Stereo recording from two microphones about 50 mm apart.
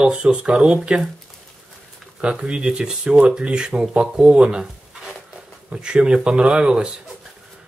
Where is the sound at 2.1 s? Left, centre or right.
Right.